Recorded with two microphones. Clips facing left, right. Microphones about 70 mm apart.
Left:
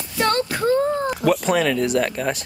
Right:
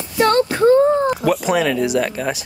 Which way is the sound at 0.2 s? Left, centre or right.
Right.